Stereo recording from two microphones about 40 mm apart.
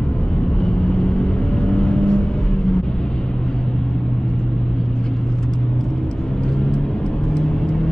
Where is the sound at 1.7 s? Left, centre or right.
Left.